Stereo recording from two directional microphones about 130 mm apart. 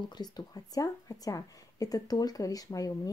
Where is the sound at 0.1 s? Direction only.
35° left (ahead or behind).